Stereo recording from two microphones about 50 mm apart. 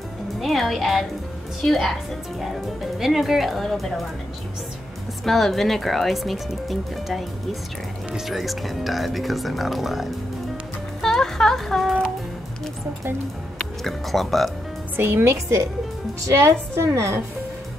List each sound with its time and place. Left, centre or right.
0.4 s speech: centre
5.2 s speech: centre
11.0 s music: centre
13.8 s speech: centre
15.0 s speech: right
16.3 s a woman's voice: right